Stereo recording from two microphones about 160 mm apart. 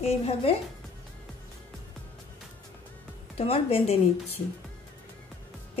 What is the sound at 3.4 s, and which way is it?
Speech, 40° left (ahead or behind).